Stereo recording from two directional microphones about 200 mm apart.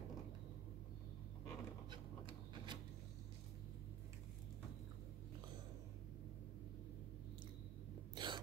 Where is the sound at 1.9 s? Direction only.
20° right (ahead or behind).